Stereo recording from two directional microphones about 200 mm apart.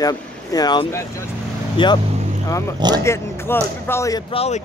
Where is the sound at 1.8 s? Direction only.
25° left (ahead or behind).